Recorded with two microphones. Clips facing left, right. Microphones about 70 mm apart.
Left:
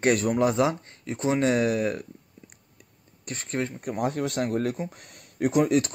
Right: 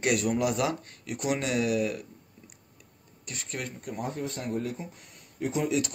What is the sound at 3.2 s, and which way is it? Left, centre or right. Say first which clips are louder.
Speech: left 7 dB; left.